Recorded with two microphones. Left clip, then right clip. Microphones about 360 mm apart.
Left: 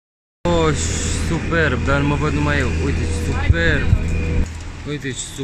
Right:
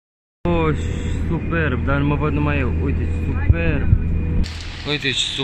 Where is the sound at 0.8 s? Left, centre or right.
Left.